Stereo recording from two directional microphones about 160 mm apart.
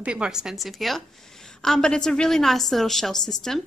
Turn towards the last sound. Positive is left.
turn(degrees=0)  # may be behind; listen again after turning